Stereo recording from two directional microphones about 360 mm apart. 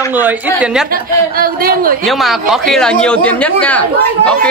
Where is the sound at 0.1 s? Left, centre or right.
Centre.